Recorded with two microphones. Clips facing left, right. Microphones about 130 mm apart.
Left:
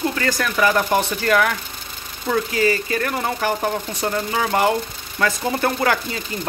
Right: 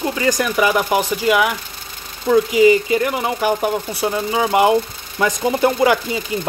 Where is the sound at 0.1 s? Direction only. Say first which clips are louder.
Right 4 dB; 15° right (ahead or behind).